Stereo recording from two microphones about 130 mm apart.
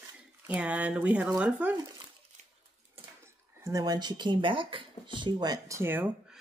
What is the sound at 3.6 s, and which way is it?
Speech, 30° right (ahead or behind).